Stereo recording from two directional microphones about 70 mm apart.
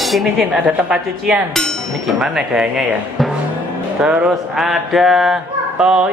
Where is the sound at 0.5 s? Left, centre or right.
Centre.